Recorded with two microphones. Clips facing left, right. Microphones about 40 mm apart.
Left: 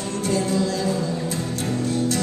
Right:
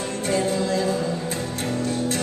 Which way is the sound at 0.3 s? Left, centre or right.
Right.